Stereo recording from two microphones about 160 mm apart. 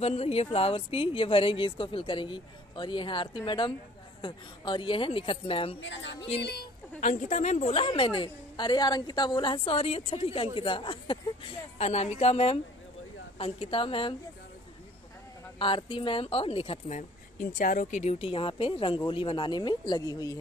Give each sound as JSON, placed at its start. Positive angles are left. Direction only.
{"t": 0.0, "sound": "a woman's voice", "side_deg": 40}
{"t": 6.4, "sound": "a woman's voice", "side_deg": 85}
{"t": 7.0, "sound": "a woman's voice", "side_deg": 50}
{"t": 15.6, "sound": "a woman's voice", "side_deg": 30}
{"t": 17.5, "sound": "a woman's voice", "side_deg": 60}